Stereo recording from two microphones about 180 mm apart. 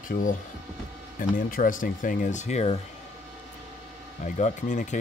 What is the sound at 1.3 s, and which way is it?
Speech, 50° left (ahead or behind).